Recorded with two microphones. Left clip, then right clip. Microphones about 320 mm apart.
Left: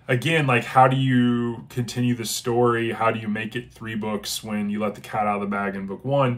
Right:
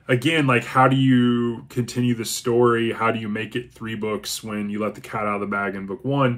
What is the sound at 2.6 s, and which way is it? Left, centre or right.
Speech, left.